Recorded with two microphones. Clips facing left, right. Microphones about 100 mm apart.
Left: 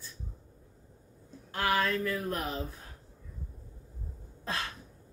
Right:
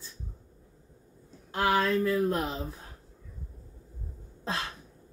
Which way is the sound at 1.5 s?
25° right (ahead or behind).